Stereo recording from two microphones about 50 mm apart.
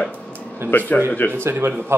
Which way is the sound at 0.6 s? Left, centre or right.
Right.